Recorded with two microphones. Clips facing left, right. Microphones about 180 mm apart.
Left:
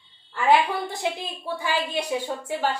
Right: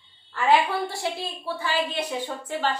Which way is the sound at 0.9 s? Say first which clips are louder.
Left 1 dB; 20° left (ahead or behind).